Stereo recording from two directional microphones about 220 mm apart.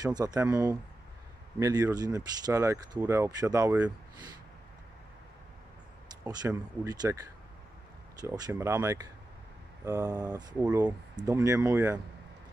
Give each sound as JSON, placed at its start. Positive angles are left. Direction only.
{"t": 0.0, "sound": "speech", "side_deg": -15}
{"t": 6.2, "sound": "speech", "side_deg": -15}
{"t": 10.5, "sound": "speech", "side_deg": -5}